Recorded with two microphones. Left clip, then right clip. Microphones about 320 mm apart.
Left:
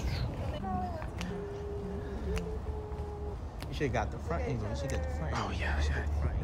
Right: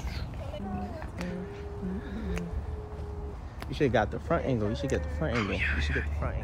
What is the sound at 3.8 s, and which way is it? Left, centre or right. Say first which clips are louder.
Speech: right 7 dB; centre.